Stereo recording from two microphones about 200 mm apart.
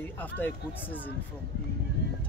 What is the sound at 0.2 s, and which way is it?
Speech, 10° left (ahead or behind).